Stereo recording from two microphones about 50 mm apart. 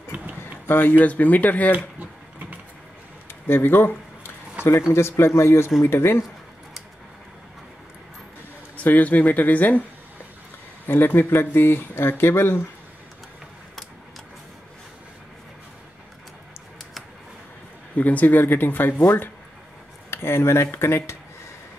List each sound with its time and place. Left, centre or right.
0.7 s speech: left
3.4 s speech: left
4.9 s speech: left
5.9 s speech: left
8.8 s speech: left
10.9 s speech: left
17.9 s speech: left
20.1 s speech: left